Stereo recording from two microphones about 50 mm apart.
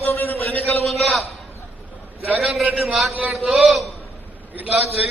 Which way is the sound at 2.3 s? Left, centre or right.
Centre.